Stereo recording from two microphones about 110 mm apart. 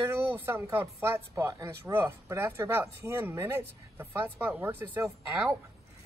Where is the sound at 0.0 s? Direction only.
25° right (ahead or behind).